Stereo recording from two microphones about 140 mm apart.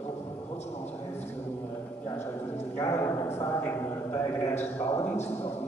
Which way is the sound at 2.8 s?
25° left (ahead or behind).